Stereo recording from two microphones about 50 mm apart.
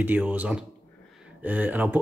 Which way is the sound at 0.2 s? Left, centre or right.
Right.